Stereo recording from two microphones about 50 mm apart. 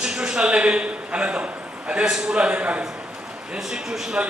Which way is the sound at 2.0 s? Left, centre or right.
Centre.